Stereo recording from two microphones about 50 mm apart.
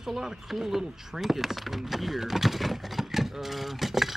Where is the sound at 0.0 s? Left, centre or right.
Centre.